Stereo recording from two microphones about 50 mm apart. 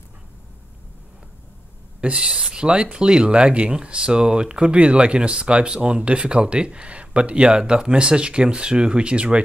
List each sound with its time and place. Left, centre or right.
2.0 s speech: right